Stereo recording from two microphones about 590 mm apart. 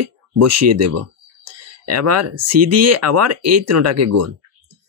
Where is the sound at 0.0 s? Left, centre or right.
Right.